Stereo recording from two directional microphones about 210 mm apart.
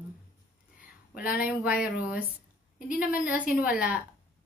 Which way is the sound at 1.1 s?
5° right (ahead or behind).